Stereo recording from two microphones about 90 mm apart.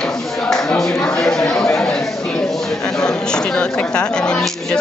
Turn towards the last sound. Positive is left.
turn(degrees=5)  # may be behind; listen again after turning